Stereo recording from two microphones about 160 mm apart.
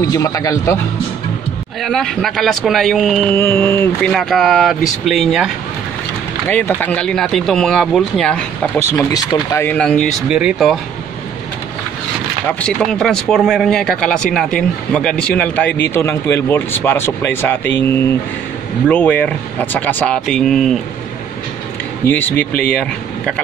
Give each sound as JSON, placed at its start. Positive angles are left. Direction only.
{"t": 0.0, "sound": "a man's voice", "side_deg": 20}
{"t": 1.8, "sound": "speech", "side_deg": 5}
{"t": 3.3, "sound": "speech", "side_deg": 15}
{"t": 4.1, "sound": "speech", "side_deg": 0}
{"t": 6.4, "sound": "speech", "side_deg": 10}
{"t": 9.1, "sound": "speech", "side_deg": 20}
{"t": 12.4, "sound": "speech", "side_deg": 5}
{"t": 22.0, "sound": "speech", "side_deg": 10}